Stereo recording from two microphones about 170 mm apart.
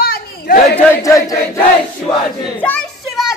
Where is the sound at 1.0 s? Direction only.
20° left (ahead or behind).